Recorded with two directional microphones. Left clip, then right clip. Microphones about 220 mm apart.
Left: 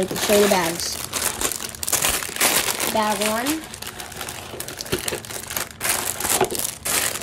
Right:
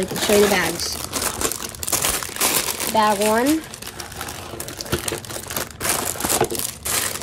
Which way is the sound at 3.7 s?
20° right (ahead or behind).